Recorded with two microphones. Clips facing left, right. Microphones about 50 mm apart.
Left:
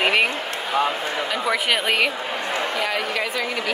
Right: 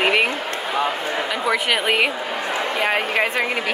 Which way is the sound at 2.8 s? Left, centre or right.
Right.